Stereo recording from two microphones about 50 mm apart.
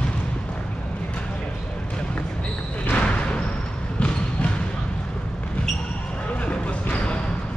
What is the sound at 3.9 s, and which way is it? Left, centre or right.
Basketball bounce, left.